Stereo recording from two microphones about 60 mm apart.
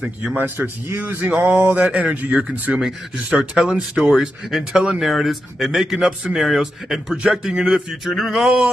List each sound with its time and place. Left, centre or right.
0.0 s speech: right
3.3 s speech: centre
4.1 s speech: centre